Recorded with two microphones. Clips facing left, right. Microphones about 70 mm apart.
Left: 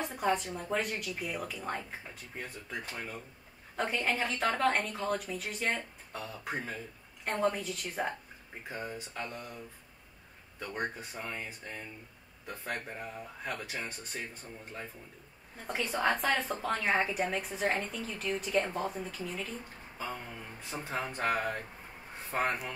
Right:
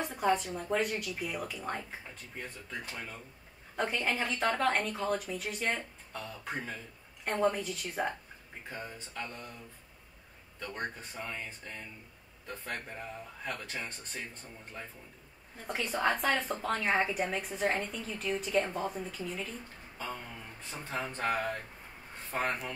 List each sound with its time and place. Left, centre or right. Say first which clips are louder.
0.1 s a woman's voice: right 3 dB; centre
2.3 s speech: left 1 dB; centre
3.7 s a woman's voice: even; centre
6.1 s speech: left 1 dB; centre
7.2 s a woman's voice: right 1 dB; centre
8.6 s speech: left 3 dB; centre
10.6 s speech: left 2 dB; centre
15.6 s a woman's voice: even; centre
20.0 s speech: left 1 dB; centre